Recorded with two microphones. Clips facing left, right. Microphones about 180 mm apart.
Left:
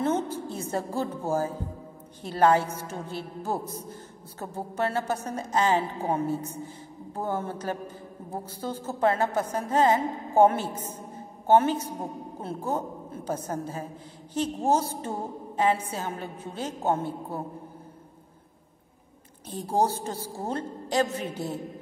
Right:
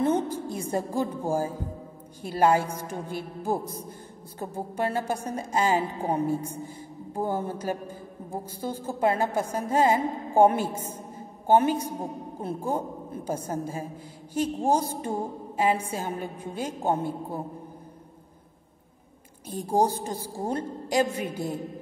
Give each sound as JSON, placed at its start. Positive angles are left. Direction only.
{"t": 0.0, "sound": "a woman's voice", "side_deg": -15}
{"t": 19.4, "sound": "a woman's voice", "side_deg": -10}